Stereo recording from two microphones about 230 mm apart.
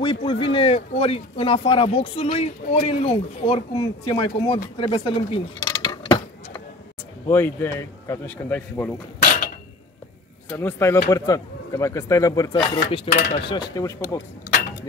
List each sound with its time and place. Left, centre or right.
0.0 s speech: left
4.7 s coin: left
7.2 s speech: centre
10.6 s speech: centre